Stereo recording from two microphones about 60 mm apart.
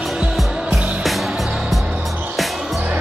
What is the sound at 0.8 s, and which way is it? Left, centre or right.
Music, right.